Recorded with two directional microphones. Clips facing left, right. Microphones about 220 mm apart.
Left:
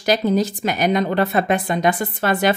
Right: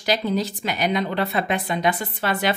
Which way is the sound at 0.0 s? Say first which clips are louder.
Left 5 dB; 45° left (ahead or behind).